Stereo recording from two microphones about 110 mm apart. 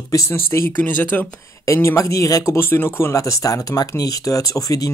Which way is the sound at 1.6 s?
25° left (ahead or behind).